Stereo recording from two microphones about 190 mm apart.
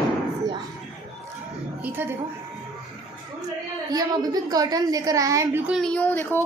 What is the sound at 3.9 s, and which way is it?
A woman's voice, 20° right (ahead or behind).